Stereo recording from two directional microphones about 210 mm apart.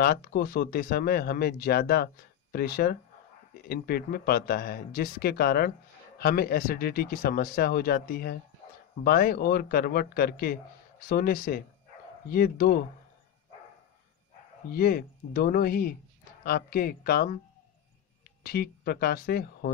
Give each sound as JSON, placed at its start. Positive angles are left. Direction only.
{"t": 0.0, "sound": "speech", "side_deg": 45}
{"t": 14.7, "sound": "speech", "side_deg": 45}
{"t": 18.4, "sound": "speech", "side_deg": 45}